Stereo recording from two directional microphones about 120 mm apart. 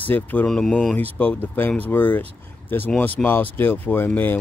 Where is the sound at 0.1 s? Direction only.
15° left (ahead or behind).